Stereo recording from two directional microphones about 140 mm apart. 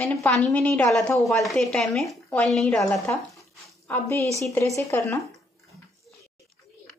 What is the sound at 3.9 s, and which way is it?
A woman's voice, 15° left (ahead or behind).